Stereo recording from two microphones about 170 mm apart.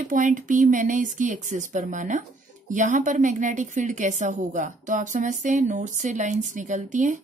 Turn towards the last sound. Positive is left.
turn(degrees=-45)  # may be behind; listen again after turning